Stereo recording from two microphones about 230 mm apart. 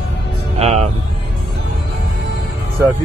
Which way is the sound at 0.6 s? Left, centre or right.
Right.